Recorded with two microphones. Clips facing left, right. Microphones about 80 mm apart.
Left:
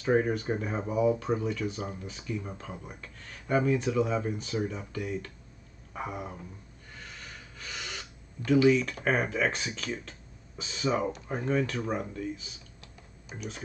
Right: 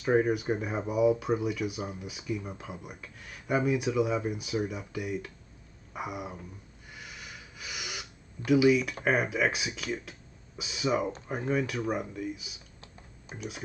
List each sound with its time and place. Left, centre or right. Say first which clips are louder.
0.0 s speech: right 1 dB; centre
6.9 s snort: even; centre
8.5 s speech: even; centre
12.8 s typing: right 1 dB; right